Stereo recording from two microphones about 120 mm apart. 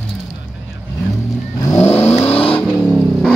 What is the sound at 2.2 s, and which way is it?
Vehicle, 55° left (ahead or behind).